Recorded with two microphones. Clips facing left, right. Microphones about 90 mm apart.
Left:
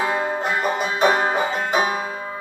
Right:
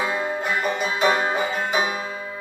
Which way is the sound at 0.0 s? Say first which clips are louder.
Left 3 dB; 45° left (ahead or behind).